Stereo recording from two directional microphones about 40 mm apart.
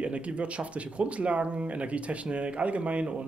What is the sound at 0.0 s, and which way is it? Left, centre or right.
Speech, right.